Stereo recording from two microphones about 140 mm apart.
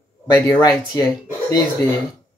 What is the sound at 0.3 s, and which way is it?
Speech, 25° left (ahead or behind).